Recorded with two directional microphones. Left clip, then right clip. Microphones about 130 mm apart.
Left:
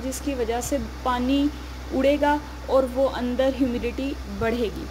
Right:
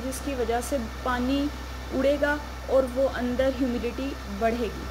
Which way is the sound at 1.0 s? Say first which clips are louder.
Left 5 dB; 20° left (ahead or behind).